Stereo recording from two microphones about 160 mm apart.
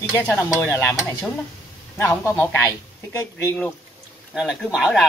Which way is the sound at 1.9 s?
15° left (ahead or behind).